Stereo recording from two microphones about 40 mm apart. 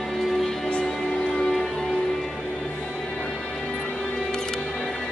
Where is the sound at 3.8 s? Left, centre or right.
Left.